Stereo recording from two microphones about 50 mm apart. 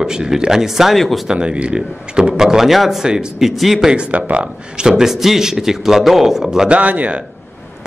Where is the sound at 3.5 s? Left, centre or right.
Centre.